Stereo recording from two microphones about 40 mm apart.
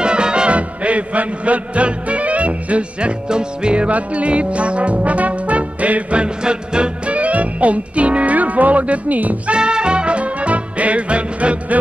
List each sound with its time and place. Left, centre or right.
0.0 s music: right
6.2 s music: right
9.5 s music: right